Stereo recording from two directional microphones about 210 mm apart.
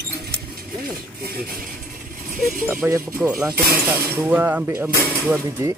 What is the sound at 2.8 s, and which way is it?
Speech, 15° right (ahead or behind).